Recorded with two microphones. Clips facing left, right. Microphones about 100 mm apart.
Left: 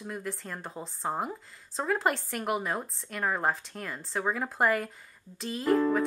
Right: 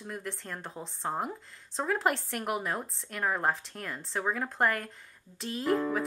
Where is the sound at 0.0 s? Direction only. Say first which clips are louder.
Left 2 dB; centre (ahead or behind).